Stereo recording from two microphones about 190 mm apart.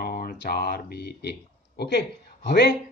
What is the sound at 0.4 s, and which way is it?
Speech, 55° left (ahead or behind).